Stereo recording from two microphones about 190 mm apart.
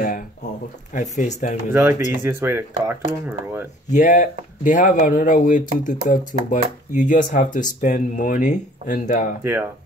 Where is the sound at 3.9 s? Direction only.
40° left (ahead or behind).